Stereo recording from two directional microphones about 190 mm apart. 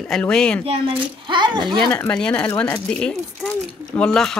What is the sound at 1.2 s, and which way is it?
Speech, 25° right (ahead or behind).